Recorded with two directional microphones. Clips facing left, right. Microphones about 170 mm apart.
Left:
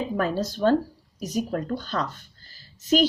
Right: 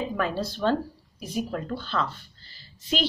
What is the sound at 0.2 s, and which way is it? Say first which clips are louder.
Speech: left 4 dB; 45° left (ahead or behind).